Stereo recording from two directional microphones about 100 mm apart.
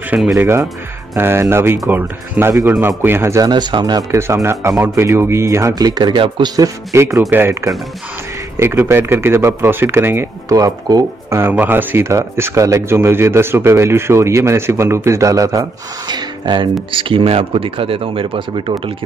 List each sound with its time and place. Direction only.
0.1 s speech: 5° right (ahead or behind)
0.4 s speech: 25° right (ahead or behind)
3.4 s speech: 45° right (ahead or behind)
4.1 s speech: 30° right (ahead or behind); by 6.2 s 45° right (ahead or behind)
6.2 s speech: 55° right (ahead or behind)
6.5 s speech: 35° right (ahead or behind)
8.5 s speech: 25° right (ahead or behind)
10.5 s speech: 40° right (ahead or behind)
11.5 s speech: 20° right (ahead or behind); by 15.6 s 35° right (ahead or behind)
16.1 s speech: 45° right (ahead or behind)
16.9 s speech: 70° right (ahead or behind)